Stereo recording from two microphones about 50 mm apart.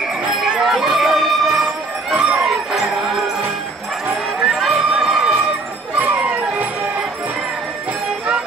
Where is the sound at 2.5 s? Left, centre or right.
Centre.